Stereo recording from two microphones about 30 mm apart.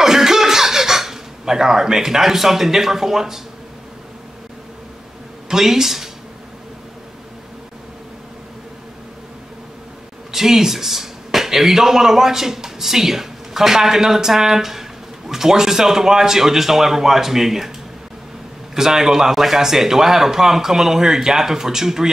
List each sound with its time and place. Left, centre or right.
0.0 s chuckle: centre
5.5 s speech: centre
10.3 s speech: centre
18.8 s speech: centre